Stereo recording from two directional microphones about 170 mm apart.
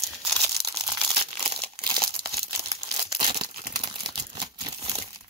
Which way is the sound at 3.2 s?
25° right (ahead or behind).